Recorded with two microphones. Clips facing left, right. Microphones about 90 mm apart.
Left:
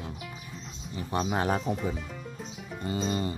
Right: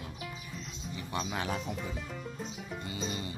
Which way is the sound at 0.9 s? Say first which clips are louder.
Left 7 dB; 35° left (ahead or behind).